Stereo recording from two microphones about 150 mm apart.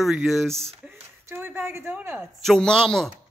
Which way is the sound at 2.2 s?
5° left (ahead or behind).